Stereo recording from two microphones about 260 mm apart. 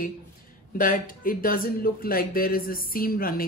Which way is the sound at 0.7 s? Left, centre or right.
Left.